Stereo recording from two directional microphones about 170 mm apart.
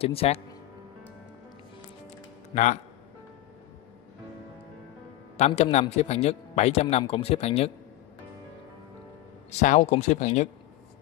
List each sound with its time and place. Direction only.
0.0 s speech: 35° left (ahead or behind)
2.5 s speech: 45° left (ahead or behind)
5.6 s speech: 40° left (ahead or behind)
9.5 s speech: 45° left (ahead or behind)